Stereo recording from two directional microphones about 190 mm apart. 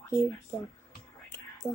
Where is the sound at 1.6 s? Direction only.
20° left (ahead or behind).